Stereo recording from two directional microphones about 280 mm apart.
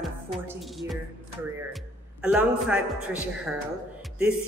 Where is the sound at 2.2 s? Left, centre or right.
Centre.